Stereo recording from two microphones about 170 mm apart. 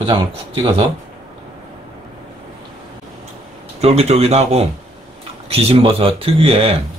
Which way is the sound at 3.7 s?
35° right (ahead or behind).